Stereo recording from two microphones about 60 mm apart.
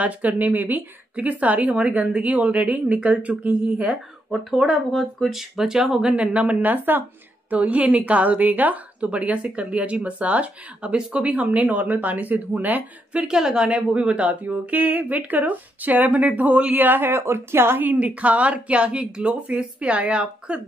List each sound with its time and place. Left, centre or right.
0.0 s a woman's voice: right
4.3 s speech: centre
6.1 s a woman's voice: right
13.4 s a woman's voice: centre
16.7 s a woman's voice: right
17.9 s a woman's voice: right